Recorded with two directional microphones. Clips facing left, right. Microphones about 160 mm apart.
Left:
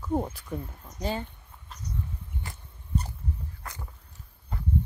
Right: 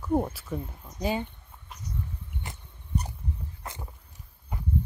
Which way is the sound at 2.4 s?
15° right (ahead or behind).